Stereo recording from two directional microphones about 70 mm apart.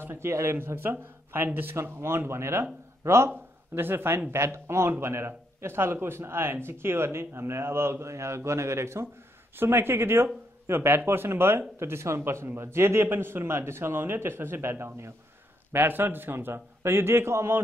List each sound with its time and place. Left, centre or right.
0.0 s speech: right